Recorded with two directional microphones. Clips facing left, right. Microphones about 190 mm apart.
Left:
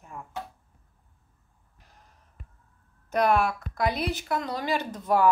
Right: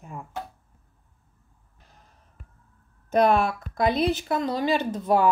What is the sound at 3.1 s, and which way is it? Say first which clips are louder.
Speech: right 3 dB; 25° right (ahead or behind).